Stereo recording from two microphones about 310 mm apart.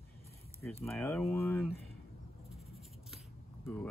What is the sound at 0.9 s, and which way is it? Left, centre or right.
Speech, centre.